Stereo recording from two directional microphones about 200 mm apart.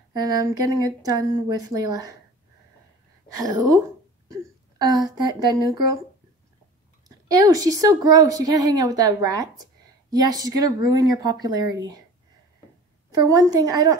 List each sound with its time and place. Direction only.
0.1 s a woman's voice: 20° right (ahead or behind)
3.3 s a woman's voice: 15° right (ahead or behind)
7.1 s a woman's voice: 15° right (ahead or behind)
13.3 s a woman's voice: 15° right (ahead or behind)